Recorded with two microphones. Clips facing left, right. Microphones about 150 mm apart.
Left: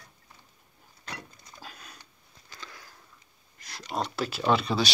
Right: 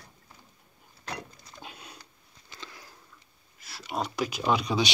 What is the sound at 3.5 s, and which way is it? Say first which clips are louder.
Speech: left 1 dB; 5° right (ahead or behind).